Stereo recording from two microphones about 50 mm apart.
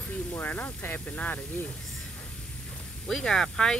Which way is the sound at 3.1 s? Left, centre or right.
Centre.